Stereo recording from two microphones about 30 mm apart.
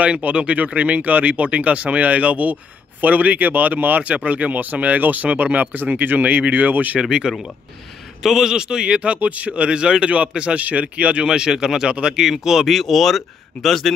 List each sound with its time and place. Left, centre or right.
0.0 s speech: right
3.0 s speech: right
4.0 s speech: right
7.0 s speech: right
8.2 s a man's voice: centre
8.5 s speech: right
9.2 s speech: right
9.5 s a man's voice: right
10.6 s speech: right
11.2 s speech: right
12.6 s speech: centre